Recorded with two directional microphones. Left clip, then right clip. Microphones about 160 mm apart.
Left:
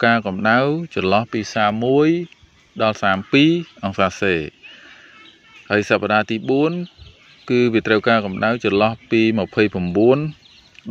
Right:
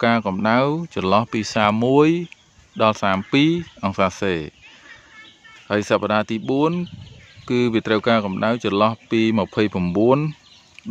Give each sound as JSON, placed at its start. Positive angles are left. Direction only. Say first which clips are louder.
{"t": 0.0, "sound": "speech", "louder": "left 2 dB", "side_deg": -5}
{"t": 1.3, "sound": "speech", "louder": "even", "side_deg": -20}
{"t": 2.8, "sound": "speech", "louder": "even", "side_deg": -10}
{"t": 5.7, "sound": "speech", "louder": "left 2 dB", "side_deg": -5}